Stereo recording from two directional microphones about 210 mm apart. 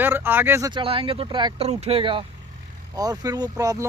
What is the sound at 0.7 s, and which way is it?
Speech, 25° right (ahead or behind).